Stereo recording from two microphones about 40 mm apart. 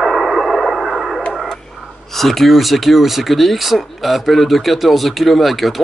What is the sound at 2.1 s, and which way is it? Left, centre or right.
Speech, centre.